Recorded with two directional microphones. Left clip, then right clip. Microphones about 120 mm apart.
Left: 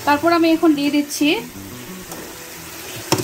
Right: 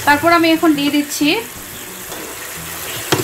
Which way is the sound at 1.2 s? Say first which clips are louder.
Right 2 dB; 20° left (ahead or behind).